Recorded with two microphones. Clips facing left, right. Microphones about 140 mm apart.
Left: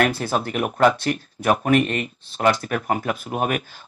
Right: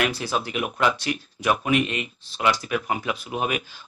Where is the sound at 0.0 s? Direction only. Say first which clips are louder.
Left 4 dB; 50° left (ahead or behind).